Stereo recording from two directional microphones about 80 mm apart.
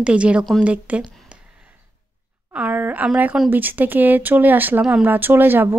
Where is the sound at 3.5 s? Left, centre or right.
Right.